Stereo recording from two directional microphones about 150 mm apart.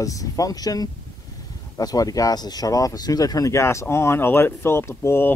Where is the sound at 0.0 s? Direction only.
20° left (ahead or behind).